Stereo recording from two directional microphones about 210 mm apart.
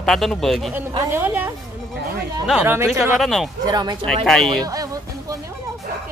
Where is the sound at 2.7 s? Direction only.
10° right (ahead or behind).